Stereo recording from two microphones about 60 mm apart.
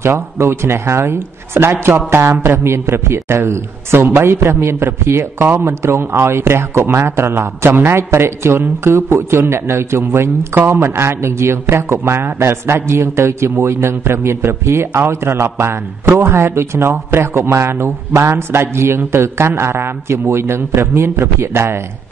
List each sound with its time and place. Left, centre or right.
0.0 s a man's voice: right
18.3 s a man's voice: right